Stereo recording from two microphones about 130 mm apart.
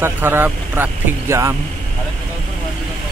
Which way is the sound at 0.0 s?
15° right (ahead or behind).